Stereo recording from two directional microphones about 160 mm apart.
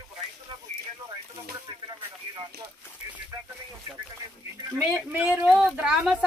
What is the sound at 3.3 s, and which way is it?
Speech, 20° right (ahead or behind).